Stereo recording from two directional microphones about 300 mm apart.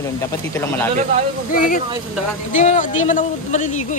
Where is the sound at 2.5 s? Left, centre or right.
Left.